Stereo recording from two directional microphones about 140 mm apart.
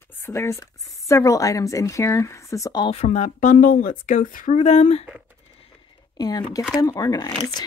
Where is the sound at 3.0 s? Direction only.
60° left (ahead or behind).